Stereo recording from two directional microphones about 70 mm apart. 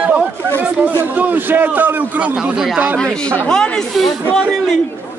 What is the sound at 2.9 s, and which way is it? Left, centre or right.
Speech, centre.